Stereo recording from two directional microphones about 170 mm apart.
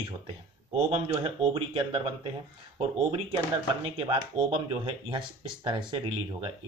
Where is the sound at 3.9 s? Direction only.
30° right (ahead or behind).